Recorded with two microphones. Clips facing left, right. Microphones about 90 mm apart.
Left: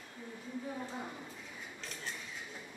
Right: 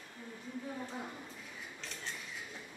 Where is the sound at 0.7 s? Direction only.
5° left (ahead or behind).